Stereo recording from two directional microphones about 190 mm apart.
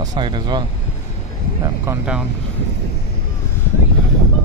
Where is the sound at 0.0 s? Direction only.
20° right (ahead or behind).